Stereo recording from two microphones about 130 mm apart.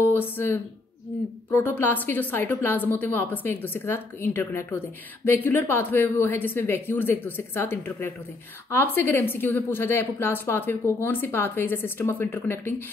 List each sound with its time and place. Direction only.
0.0 s a woman's voice: 15° left (ahead or behind)